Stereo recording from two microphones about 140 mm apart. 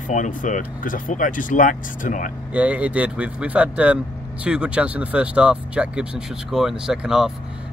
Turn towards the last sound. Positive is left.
turn(degrees=-5)  # may be behind; listen again after turning